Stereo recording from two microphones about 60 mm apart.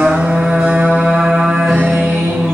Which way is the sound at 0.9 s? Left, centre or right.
Centre.